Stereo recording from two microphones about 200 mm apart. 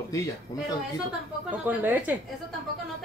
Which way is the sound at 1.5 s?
10° right (ahead or behind).